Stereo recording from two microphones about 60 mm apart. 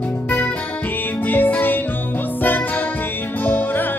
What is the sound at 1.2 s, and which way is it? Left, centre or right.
Music, left.